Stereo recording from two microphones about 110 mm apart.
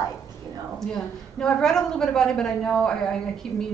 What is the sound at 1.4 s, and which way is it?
A woman's voice, 5° left (ahead or behind).